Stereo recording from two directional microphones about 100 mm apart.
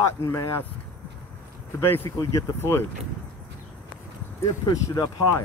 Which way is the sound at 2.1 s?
35° left (ahead or behind).